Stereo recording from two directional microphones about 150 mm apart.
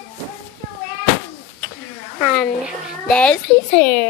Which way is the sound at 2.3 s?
5° left (ahead or behind).